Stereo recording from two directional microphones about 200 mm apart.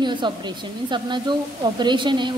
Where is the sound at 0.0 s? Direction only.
20° right (ahead or behind).